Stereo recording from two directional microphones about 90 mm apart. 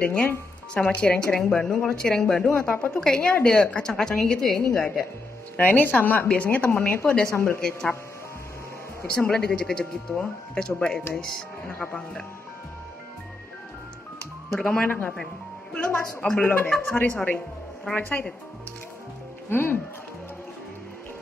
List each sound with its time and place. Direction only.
0.0 s speech: 15° left (ahead or behind)
5.6 s speech: 20° left (ahead or behind)
7.3 s a woman's voice: 25° left (ahead or behind)
9.0 s speech: 10° left (ahead or behind)
14.5 s speech: 5° left (ahead or behind)
14.8 s a woman's voice: 20° left (ahead or behind)
19.5 s a woman's voice: 25° left (ahead or behind)